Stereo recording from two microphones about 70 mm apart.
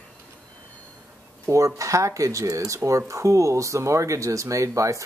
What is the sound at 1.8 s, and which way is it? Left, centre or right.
Speech, right.